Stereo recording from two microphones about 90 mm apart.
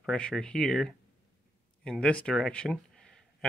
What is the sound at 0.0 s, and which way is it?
Speech, 5° left (ahead or behind).